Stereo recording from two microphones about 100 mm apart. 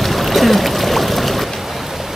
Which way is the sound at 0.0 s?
Centre (ahead or behind).